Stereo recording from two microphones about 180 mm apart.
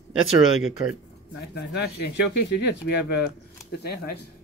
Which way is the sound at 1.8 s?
70° left (ahead or behind).